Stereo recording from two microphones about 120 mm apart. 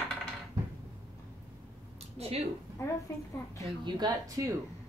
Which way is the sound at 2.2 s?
60° right (ahead or behind).